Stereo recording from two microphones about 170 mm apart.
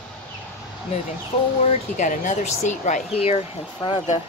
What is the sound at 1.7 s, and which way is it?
Speech, 45° left (ahead or behind).